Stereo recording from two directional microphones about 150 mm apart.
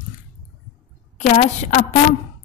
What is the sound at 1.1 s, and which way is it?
Speech, 50° left (ahead or behind).